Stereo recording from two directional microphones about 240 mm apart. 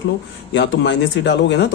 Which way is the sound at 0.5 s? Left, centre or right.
Left.